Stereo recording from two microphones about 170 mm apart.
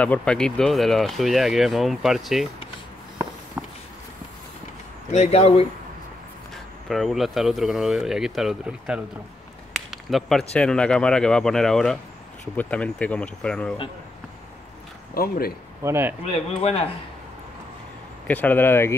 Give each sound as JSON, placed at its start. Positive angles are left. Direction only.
{"t": 0.0, "sound": "speech", "side_deg": 5}
{"t": 5.1, "sound": "speech", "side_deg": 40}
{"t": 6.9, "sound": "speech", "side_deg": 0}
{"t": 15.1, "sound": "speech", "side_deg": 60}
{"t": 15.8, "sound": "speech", "side_deg": -15}
{"t": 18.2, "sound": "speech", "side_deg": 10}